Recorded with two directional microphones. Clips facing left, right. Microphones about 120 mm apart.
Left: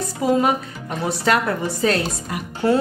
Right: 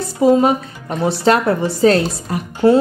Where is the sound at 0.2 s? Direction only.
25° right (ahead or behind).